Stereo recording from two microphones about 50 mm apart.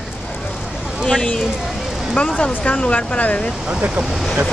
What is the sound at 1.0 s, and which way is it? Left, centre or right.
Speech, centre.